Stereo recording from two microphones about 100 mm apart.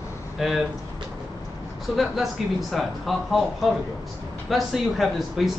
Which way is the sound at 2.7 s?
Centre (ahead or behind).